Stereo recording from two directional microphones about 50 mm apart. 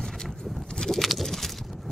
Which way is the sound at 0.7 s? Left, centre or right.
Centre.